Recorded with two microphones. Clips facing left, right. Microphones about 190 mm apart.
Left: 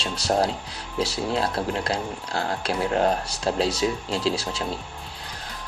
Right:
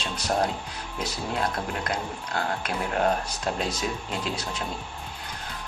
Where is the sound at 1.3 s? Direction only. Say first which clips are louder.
Left 2 dB; 30° left (ahead or behind).